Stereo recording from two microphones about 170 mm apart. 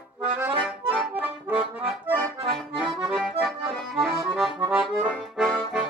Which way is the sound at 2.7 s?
5° right (ahead or behind).